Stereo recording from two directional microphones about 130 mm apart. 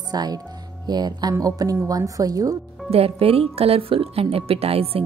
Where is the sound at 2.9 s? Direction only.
50° right (ahead or behind).